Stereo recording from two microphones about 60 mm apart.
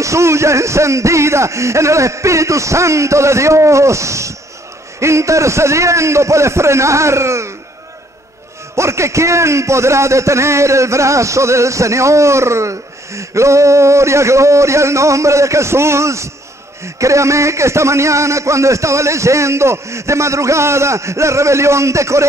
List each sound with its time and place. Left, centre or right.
0.0 s a man's voice: right
8.7 s a man's voice: right